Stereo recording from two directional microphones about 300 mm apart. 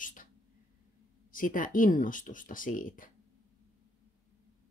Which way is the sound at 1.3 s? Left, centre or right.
Left.